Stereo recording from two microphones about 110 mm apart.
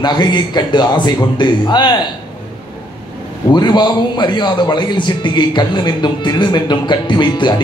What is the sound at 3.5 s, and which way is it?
A man's voice, 40° left (ahead or behind).